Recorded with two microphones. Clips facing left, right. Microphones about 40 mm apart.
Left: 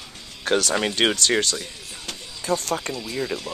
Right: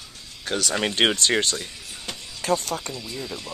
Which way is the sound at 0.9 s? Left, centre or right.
Right.